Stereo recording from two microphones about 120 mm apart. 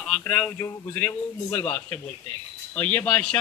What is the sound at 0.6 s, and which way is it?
A man's voice, 20° left (ahead or behind).